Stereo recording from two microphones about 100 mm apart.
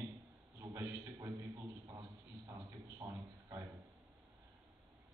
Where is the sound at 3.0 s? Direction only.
35° right (ahead or behind).